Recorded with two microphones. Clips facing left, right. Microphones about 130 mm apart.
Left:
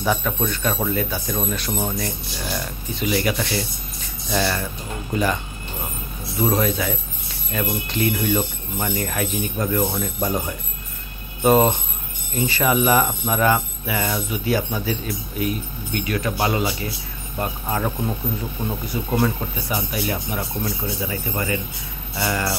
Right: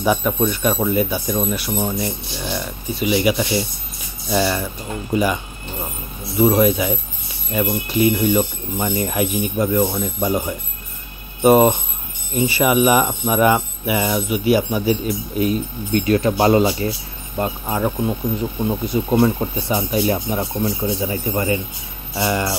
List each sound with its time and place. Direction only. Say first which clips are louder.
0.0 s speech: right 4 dB; 15° right (ahead or behind)
6.4 s speech: right 6 dB; 10° right (ahead or behind); by 16.9 s 35° right (ahead or behind)
17.4 s speech: right 4 dB; 15° right (ahead or behind)